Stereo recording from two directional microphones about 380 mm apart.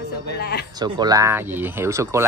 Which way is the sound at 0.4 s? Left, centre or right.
Left.